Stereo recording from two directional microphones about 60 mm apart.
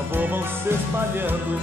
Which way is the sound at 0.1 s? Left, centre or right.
Right.